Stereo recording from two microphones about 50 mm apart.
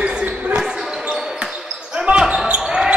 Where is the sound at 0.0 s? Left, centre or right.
Right.